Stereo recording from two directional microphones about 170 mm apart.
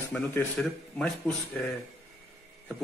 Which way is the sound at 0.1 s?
15° left (ahead or behind).